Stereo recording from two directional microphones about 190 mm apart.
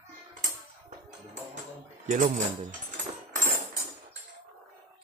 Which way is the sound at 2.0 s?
40° right (ahead or behind).